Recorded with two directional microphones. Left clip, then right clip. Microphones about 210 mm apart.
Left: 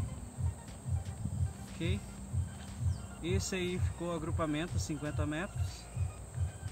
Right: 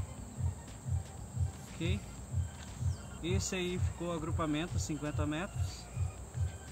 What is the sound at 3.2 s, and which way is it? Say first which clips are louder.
Speech: even; 15° right (ahead or behind).